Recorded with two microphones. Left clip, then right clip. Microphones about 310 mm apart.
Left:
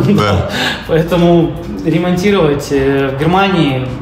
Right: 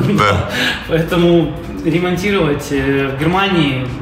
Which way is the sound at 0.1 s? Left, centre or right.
Centre.